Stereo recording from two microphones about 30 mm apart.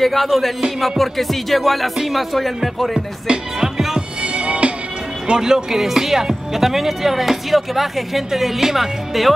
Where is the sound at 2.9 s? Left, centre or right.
Right.